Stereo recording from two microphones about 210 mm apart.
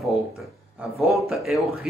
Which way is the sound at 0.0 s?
Centre (ahead or behind).